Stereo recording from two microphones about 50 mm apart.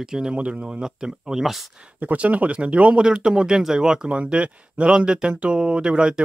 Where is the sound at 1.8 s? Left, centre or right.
Right.